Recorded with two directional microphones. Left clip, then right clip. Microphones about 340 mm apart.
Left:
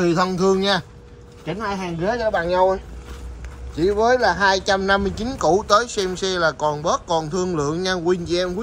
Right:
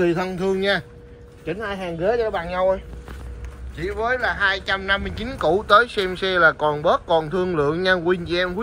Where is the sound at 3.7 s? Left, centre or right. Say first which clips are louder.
Left 6 dB; centre.